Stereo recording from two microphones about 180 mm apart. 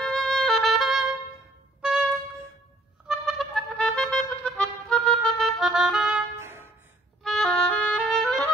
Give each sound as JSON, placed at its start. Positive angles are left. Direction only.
{"t": 0.0, "sound": "music", "side_deg": 5}
{"t": 3.1, "sound": "music", "side_deg": 0}
{"t": 6.4, "sound": "music", "side_deg": -15}
{"t": 7.2, "sound": "music", "side_deg": 0}
{"t": 8.2, "sound": "clarinet", "side_deg": 0}